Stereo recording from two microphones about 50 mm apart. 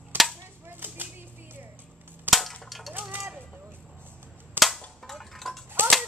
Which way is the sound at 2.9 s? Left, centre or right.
Right.